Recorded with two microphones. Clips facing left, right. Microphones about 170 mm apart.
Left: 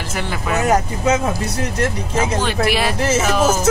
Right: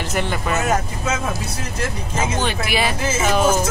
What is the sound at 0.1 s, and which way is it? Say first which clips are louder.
Speech: even; centre (ahead or behind).